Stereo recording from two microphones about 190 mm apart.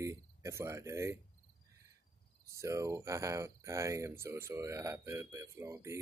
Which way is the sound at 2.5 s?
15° right (ahead or behind).